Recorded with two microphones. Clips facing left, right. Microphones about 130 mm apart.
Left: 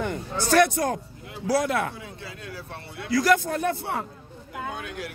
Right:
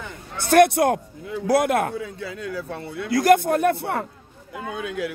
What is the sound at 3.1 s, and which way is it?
Speech, 55° right (ahead or behind).